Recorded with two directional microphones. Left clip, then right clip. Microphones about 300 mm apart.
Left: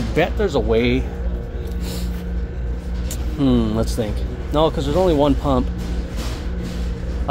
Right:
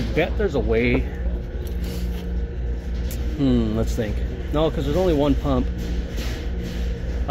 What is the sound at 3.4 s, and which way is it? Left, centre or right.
Speech, centre.